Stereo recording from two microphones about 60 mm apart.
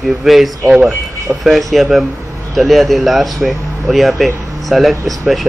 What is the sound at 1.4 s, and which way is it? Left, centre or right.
Speech, centre.